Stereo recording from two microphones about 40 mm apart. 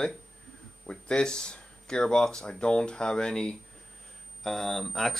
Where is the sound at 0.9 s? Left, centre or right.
Left.